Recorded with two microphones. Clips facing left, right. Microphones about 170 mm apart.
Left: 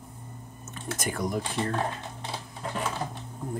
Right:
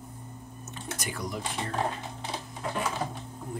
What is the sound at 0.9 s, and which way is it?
Speech, 50° left (ahead or behind).